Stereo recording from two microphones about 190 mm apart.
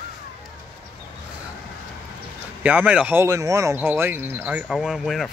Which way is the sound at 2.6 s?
10° right (ahead or behind).